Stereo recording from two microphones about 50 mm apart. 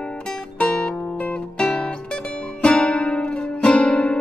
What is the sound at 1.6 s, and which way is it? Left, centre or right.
Music, centre.